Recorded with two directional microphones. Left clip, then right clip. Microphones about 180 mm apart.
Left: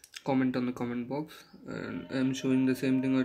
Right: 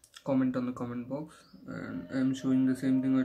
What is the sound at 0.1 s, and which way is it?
Speech, 10° left (ahead or behind).